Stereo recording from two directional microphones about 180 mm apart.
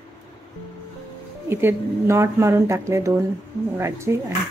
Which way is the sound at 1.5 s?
10° right (ahead or behind).